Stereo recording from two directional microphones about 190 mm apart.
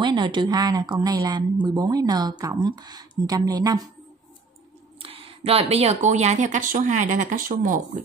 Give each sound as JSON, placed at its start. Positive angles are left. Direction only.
{"t": 0.0, "sound": "a woman's voice", "side_deg": -25}
{"t": 5.0, "sound": "speech", "side_deg": -30}